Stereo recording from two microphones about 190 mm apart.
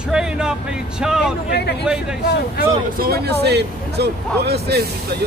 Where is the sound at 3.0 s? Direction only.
55° right (ahead or behind).